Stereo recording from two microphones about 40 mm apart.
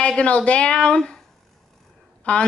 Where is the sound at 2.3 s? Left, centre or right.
Left.